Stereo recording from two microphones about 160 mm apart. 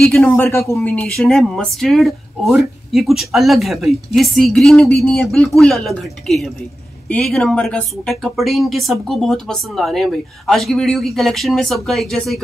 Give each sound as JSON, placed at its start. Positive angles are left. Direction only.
{"t": 0.0, "sound": "speech", "side_deg": 5}
{"t": 0.5, "sound": "speech", "side_deg": 15}
{"t": 1.0, "sound": "speech", "side_deg": 5}